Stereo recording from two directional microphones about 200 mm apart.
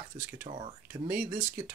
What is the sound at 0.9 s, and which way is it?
Speech, 10° right (ahead or behind).